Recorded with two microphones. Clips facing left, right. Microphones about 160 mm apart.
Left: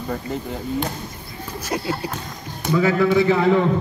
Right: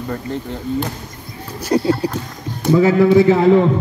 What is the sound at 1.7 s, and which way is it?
A man's voice, 35° right (ahead or behind).